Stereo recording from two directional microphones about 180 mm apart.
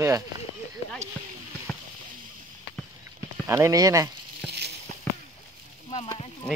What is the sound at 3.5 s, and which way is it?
Speech, 15° right (ahead or behind).